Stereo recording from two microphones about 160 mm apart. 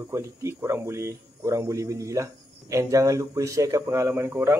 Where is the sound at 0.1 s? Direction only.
15° right (ahead or behind).